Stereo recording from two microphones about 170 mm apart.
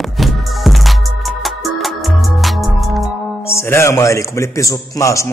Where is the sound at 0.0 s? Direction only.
Centre (ahead or behind).